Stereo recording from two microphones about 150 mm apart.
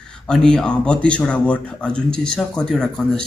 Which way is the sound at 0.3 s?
5° left (ahead or behind).